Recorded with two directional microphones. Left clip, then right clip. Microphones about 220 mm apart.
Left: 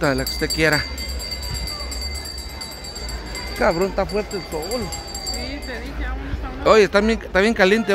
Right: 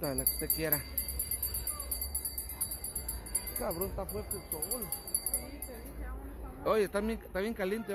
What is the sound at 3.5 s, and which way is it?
Speech, 30° left (ahead or behind).